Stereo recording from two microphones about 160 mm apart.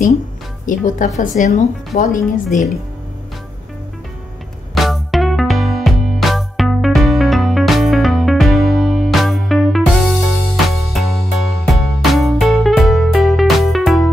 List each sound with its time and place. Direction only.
0.7 s a woman's voice: 55° left (ahead or behind)
4.7 s music: centre (ahead or behind)